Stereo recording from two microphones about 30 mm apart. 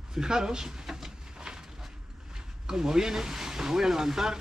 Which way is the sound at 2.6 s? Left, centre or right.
Right.